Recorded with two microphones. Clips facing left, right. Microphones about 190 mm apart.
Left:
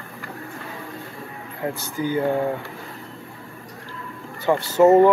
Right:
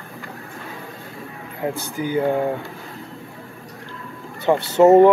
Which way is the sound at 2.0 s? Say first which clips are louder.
Right 1 dB; 15° right (ahead or behind).